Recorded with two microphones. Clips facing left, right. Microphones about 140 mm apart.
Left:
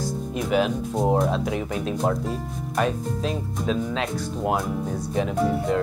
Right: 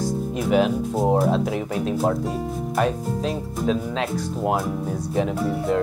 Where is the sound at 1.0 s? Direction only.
5° right (ahead or behind).